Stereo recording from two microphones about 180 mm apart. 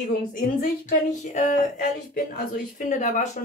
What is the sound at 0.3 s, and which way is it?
Speech, 50° left (ahead or behind).